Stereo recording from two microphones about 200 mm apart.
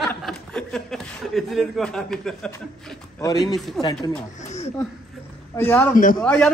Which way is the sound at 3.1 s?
15° left (ahead or behind).